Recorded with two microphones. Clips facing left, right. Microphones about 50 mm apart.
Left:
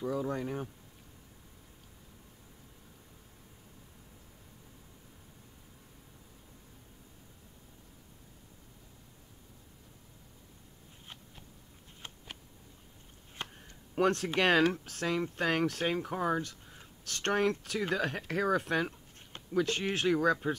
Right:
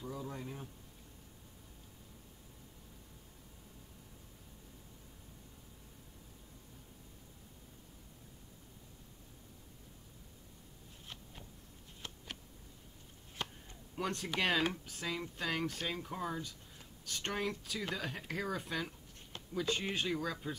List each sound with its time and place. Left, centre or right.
0.0 s speech: left
12.0 s a sound: left
13.9 s speech: left
17.0 s speech: left